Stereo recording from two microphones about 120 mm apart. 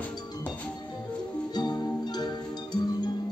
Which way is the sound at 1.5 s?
35° left (ahead or behind).